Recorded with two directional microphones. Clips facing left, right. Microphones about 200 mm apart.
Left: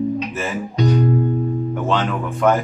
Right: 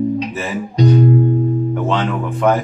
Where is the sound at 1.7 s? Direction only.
Centre (ahead or behind).